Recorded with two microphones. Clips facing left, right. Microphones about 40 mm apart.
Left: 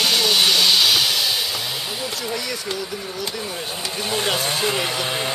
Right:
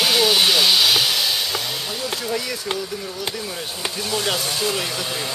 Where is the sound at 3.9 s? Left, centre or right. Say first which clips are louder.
Left 1 dB; left.